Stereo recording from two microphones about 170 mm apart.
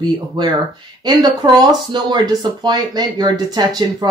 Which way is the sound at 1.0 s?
25° right (ahead or behind).